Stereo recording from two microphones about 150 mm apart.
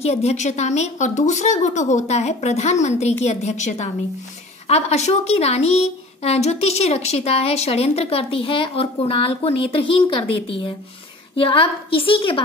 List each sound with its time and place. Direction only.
0.0 s a woman's voice: 45° left (ahead or behind)